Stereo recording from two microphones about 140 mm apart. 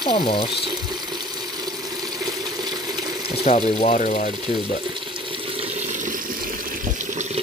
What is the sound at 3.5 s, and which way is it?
Speech, 45° left (ahead or behind).